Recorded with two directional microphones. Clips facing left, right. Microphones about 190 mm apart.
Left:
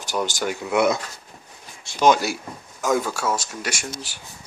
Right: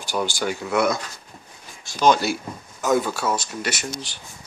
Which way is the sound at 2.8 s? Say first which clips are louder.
Right 1 dB; 5° right (ahead or behind).